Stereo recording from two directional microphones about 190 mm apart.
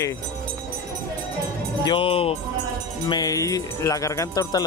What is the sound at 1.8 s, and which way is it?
Speech, 25° left (ahead or behind).